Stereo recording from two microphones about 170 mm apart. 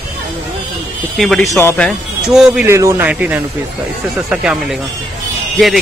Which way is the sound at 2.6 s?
15° right (ahead or behind).